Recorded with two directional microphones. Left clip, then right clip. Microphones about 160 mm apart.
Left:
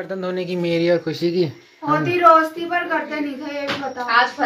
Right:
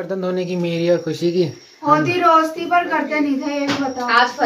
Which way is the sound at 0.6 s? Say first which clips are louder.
Left 1 dB; 20° left (ahead or behind).